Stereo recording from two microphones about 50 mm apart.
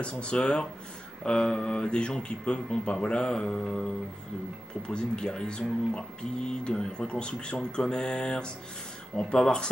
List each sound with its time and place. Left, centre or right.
0.0 s speech: left